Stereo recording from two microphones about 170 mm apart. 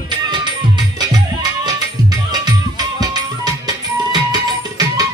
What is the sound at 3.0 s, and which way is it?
Music, 25° right (ahead or behind).